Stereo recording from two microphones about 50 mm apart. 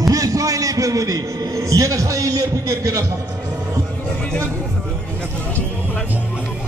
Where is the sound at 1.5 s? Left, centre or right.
Right.